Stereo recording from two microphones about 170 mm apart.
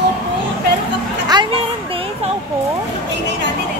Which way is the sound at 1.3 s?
25° right (ahead or behind).